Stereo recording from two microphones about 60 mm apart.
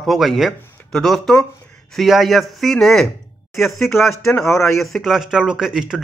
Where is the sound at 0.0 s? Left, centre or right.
Centre.